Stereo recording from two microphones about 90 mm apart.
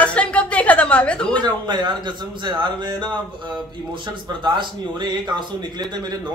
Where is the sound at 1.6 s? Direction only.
55° right (ahead or behind).